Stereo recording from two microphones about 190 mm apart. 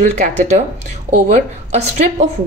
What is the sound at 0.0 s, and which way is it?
Speech, 40° right (ahead or behind).